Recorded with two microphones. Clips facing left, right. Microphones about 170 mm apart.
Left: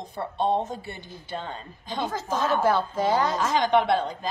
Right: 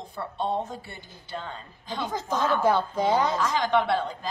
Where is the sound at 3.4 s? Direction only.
20° left (ahead or behind).